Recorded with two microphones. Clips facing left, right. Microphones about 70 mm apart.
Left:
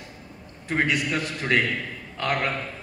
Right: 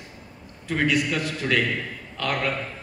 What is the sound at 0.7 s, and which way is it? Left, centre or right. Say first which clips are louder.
Speech: right 1 dB; left.